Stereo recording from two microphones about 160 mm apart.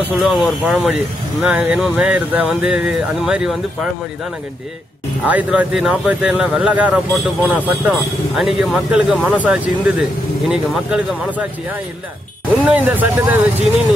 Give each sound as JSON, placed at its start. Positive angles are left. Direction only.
{"t": 0.0, "sound": "speech", "side_deg": -5}
{"t": 5.2, "sound": "speech", "side_deg": -10}
{"t": 12.6, "sound": "speech", "side_deg": -10}